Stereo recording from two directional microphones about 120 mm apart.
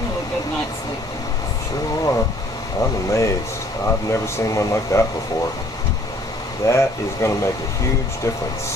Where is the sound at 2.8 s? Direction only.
25° left (ahead or behind).